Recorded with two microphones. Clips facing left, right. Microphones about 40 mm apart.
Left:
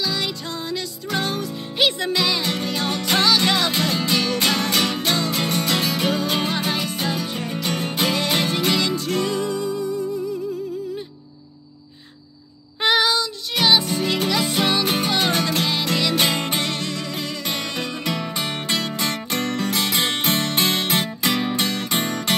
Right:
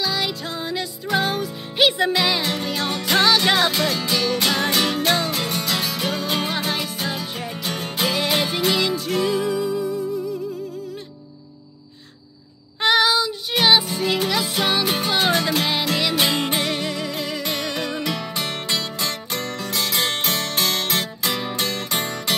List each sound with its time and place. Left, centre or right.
0.0 s music: centre
3.7 s music: centre
5.5 s music: centre
12.8 s child singing: centre
13.2 s music: centre
18.3 s music: centre